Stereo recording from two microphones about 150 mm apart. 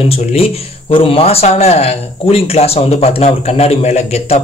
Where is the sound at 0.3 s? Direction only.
40° left (ahead or behind).